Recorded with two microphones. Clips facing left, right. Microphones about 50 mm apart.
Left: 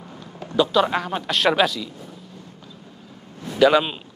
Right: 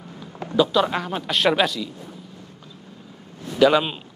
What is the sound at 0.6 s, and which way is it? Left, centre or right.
Speech, centre.